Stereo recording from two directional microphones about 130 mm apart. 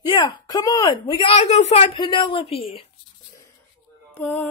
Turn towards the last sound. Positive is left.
turn(degrees=15)  # may be behind; listen again after turning